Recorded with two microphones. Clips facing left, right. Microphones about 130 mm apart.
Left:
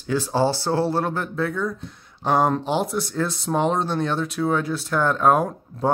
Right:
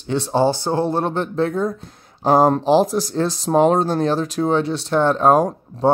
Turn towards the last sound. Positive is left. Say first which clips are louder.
# right 5 dB
turn(degrees=-30)  # may be behind; listen again after turning